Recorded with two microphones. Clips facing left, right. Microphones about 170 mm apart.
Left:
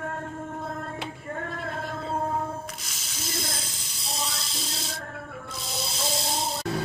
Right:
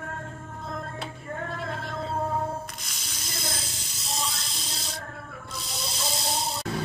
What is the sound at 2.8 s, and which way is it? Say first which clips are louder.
Snake: left 3 dB; centre (ahead or behind).